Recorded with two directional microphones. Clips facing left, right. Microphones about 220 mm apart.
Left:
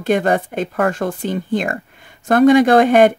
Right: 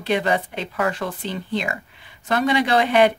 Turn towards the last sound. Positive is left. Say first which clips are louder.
# left 6 dB
turn(degrees=50)  # may be behind; listen again after turning